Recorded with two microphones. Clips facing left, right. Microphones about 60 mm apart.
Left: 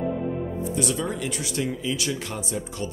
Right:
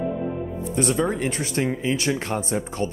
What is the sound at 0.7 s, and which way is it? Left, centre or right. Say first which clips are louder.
Speech: right 7 dB; right.